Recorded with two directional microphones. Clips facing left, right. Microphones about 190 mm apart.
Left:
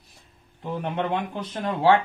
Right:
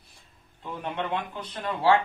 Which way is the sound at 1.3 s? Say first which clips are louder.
Left 4 dB; 45° left (ahead or behind).